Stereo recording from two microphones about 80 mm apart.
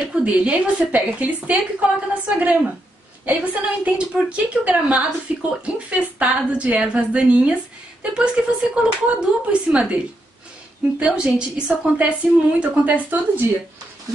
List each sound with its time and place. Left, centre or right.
0.1 s a woman's voice: centre
11.0 s a woman's voice: centre